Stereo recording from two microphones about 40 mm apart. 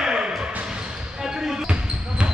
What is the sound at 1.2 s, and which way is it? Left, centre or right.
Basketball bounce, centre.